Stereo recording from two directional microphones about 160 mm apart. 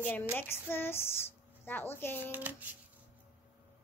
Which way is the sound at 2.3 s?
10° right (ahead or behind).